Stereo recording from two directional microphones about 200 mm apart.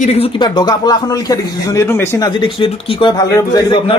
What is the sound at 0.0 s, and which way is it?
Speech, 30° left (ahead or behind).